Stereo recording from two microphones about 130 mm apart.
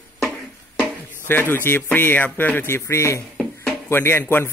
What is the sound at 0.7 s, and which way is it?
Speech, 15° left (ahead or behind).